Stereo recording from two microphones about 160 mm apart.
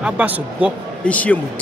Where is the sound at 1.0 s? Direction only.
10° left (ahead or behind).